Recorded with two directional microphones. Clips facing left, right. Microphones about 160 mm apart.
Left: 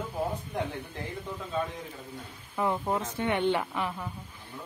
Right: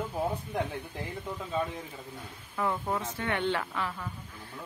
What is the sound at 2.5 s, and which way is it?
Speech, 20° left (ahead or behind).